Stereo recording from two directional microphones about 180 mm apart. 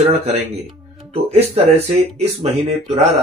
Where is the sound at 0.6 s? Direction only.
35° right (ahead or behind).